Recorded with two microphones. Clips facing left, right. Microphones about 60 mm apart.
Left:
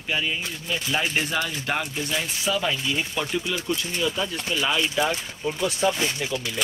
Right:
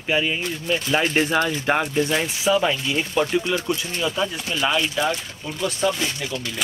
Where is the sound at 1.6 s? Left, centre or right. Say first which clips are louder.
Right 7 dB; right.